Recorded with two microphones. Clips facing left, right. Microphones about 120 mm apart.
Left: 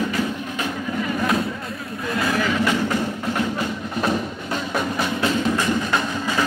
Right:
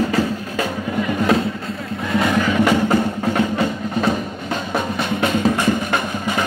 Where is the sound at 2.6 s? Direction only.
55° right (ahead or behind).